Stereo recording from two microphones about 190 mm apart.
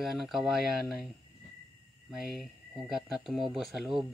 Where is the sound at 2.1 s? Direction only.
Centre (ahead or behind).